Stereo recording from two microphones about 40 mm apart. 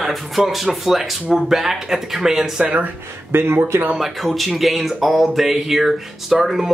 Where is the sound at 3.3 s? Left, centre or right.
Right.